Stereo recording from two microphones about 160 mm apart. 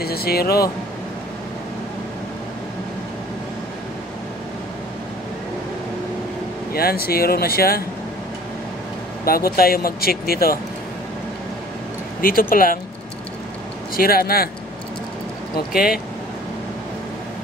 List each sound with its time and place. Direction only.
0.0 s speech: 75° left (ahead or behind)
6.7 s speech: 70° left (ahead or behind)
9.2 s speech: 70° left (ahead or behind)
12.2 s speech: 65° left (ahead or behind)
13.9 s speech: 70° left (ahead or behind)
15.7 s speech: 70° left (ahead or behind)